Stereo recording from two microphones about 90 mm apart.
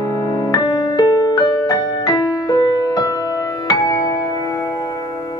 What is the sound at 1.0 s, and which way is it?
Music, 45° left (ahead or behind).